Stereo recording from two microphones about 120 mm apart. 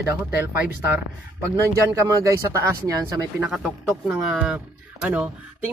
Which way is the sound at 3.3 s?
10° right (ahead or behind).